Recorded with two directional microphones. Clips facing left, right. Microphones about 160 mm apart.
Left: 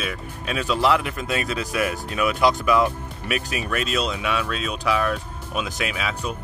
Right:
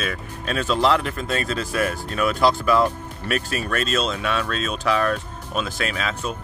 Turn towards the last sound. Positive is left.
turn(degrees=10)  # may be behind; listen again after turning